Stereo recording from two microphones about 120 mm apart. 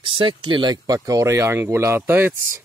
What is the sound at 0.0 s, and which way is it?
Speech, 50° right (ahead or behind).